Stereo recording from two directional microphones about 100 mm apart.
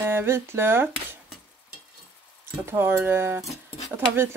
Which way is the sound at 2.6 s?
25° right (ahead or behind).